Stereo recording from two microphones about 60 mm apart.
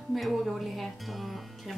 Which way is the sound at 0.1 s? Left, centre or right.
Centre.